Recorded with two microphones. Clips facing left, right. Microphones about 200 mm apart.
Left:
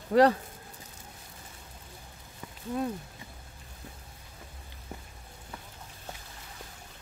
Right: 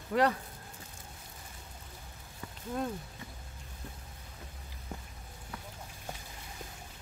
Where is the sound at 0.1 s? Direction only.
35° left (ahead or behind).